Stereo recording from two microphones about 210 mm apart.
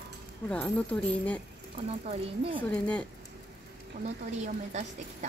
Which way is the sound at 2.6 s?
5° left (ahead or behind).